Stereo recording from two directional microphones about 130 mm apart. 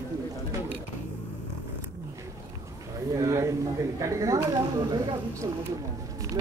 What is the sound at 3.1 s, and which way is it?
Speech, 25° right (ahead or behind).